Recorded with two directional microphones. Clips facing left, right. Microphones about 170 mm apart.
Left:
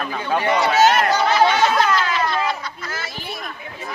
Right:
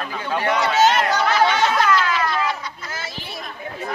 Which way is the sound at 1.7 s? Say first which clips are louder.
Even; 25° left (ahead or behind).